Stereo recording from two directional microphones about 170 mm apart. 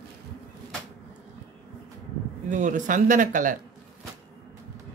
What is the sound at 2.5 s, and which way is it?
Speech, 50° right (ahead or behind).